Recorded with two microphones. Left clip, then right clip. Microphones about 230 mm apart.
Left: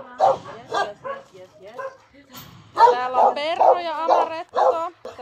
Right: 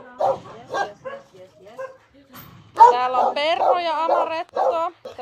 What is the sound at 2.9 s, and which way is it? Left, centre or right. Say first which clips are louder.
Speech: left 1 dB; centre.